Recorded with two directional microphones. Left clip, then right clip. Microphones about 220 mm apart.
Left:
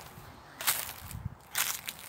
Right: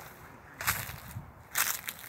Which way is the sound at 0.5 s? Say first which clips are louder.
Right 1 dB; 20° left (ahead or behind).